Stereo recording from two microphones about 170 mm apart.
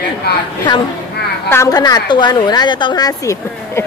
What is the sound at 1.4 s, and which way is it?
A woman's voice, 20° left (ahead or behind).